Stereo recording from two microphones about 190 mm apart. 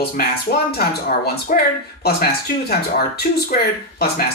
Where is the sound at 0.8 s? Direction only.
50° left (ahead or behind).